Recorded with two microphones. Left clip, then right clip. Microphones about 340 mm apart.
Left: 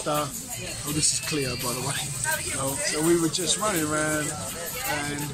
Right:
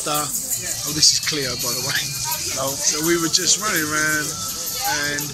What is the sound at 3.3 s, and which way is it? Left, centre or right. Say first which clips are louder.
Speech: right 6 dB; centre.